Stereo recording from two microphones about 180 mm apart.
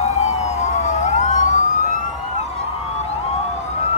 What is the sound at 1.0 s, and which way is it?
Emergency vehicle, 40° left (ahead or behind).